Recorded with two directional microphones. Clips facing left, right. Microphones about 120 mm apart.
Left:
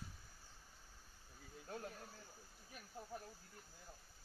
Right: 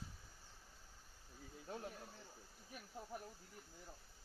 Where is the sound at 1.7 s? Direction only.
20° right (ahead or behind).